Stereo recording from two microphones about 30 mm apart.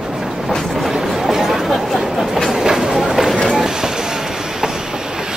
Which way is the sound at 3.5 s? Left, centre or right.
Centre.